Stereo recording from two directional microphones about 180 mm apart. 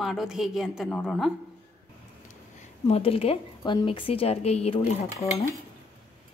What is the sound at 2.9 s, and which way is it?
A woman's voice, 35° left (ahead or behind).